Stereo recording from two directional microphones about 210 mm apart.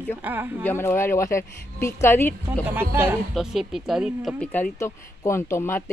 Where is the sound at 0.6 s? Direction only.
10° left (ahead or behind).